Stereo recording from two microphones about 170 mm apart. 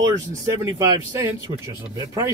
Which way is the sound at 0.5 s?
15° right (ahead or behind).